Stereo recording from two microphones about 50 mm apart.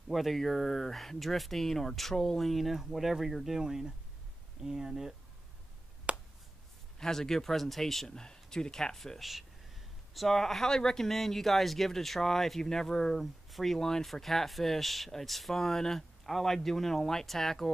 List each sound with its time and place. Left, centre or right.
0.1 s speech: centre
6.1 s finger snapping: right
7.0 s speech: centre